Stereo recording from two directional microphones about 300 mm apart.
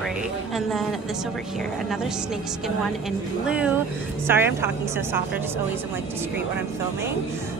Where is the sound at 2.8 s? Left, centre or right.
Centre.